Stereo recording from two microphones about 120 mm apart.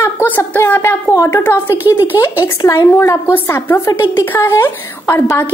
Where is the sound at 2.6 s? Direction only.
25° left (ahead or behind).